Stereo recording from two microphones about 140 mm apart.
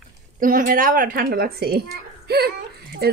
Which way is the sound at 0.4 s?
80° right.